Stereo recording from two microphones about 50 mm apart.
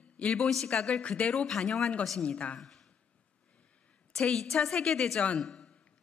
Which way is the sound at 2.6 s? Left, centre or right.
Centre.